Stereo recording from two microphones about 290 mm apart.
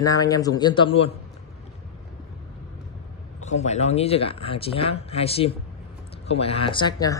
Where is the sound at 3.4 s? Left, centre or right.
Left.